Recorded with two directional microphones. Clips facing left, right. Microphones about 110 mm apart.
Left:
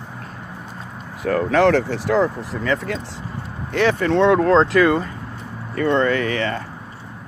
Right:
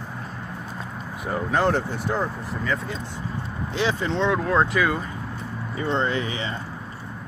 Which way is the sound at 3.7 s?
60° left (ahead or behind).